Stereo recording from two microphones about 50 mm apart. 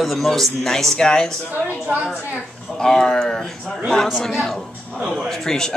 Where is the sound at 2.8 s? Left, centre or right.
Centre.